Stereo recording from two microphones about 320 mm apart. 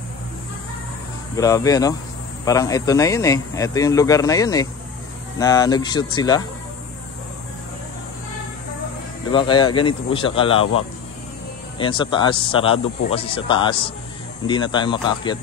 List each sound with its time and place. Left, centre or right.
1.3 s speech: centre
9.3 s speech: centre
11.8 s speech: centre